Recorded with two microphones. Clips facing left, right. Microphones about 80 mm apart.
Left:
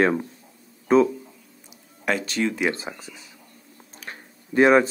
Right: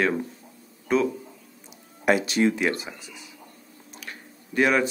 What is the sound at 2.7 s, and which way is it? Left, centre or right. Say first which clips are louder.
Speech: right 1 dB; left.